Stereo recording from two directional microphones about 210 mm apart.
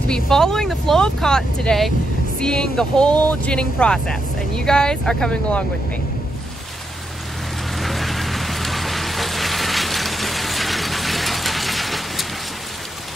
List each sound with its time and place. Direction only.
0.1 s speech: centre (ahead or behind)
7.8 s rain on surface: centre (ahead or behind)